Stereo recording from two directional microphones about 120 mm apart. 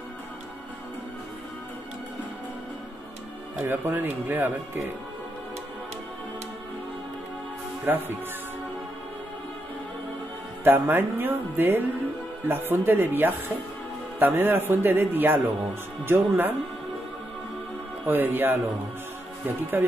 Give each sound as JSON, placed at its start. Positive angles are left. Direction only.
{"t": 3.6, "sound": "speech", "side_deg": -15}
{"t": 7.9, "sound": "speech", "side_deg": -15}
{"t": 10.6, "sound": "speech", "side_deg": -15}
{"t": 18.0, "sound": "speech", "side_deg": -15}